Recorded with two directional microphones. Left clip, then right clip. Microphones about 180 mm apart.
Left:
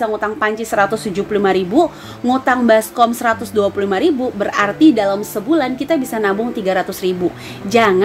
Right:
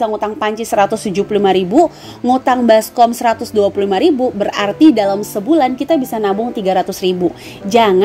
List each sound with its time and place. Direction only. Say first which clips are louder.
0.0 s a woman's voice: right 1 dB; 25° right (ahead or behind)